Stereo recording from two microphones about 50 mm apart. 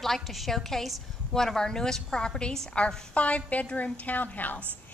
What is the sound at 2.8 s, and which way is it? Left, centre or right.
A woman's voice, left.